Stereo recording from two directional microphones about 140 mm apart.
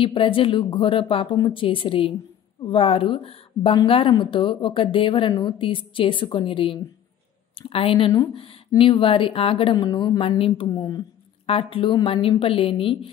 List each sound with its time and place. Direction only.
0.0 s speech: 40° left (ahead or behind)
11.4 s speech: 40° left (ahead or behind)